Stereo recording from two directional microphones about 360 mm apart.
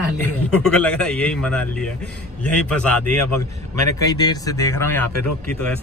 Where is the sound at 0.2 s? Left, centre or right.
Centre.